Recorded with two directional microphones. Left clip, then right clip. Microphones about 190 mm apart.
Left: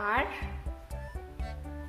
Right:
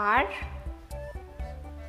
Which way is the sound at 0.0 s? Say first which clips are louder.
Right 5 dB; 15° right (ahead or behind).